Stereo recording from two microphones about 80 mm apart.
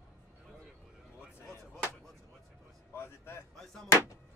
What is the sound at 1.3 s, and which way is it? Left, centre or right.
Music, left.